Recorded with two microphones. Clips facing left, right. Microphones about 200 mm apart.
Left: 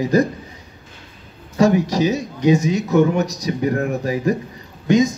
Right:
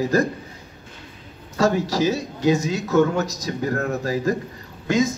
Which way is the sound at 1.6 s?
15° left (ahead or behind).